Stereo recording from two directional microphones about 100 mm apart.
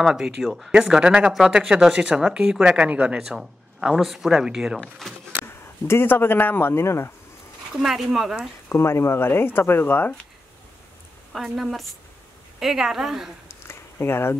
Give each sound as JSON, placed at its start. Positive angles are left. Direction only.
{"t": 0.0, "sound": "speech", "side_deg": -5}
{"t": 4.7, "sound": "speech", "side_deg": 5}
{"t": 5.9, "sound": "speech", "side_deg": 20}
{"t": 7.7, "sound": "speech", "side_deg": -5}
{"t": 8.6, "sound": "speech", "side_deg": 25}
{"t": 11.3, "sound": "speech", "side_deg": 0}
{"t": 13.7, "sound": "a sound", "side_deg": 25}